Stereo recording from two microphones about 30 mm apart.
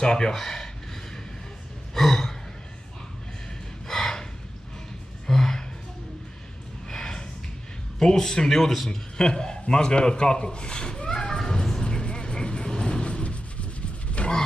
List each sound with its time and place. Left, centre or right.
0.0 s a man's voice: left
0.3 s speech: centre
2.0 s gasp: centre
3.8 s gasp: centre
6.9 s snort: centre
8.0 s speech: centre
9.2 s a man's voice: left
11.3 s a sound: centre
11.8 s vehicle: left
14.2 s a sound: left